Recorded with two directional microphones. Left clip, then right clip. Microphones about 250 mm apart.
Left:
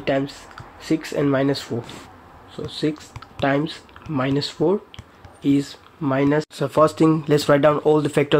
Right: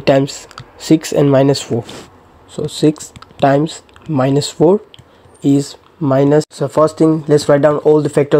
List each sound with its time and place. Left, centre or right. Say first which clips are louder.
0.0 s speech: right 10 dB; right
6.5 s speech: right 4 dB; centre